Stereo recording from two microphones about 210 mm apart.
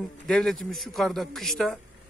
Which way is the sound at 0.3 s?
Centre (ahead or behind).